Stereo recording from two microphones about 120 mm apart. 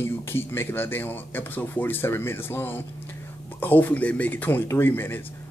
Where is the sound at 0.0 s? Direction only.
20° left (ahead or behind).